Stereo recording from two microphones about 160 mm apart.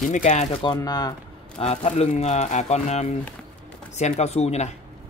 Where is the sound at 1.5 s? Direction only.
45° left (ahead or behind).